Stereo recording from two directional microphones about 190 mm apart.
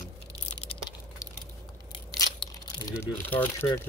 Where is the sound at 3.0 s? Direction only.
10° left (ahead or behind).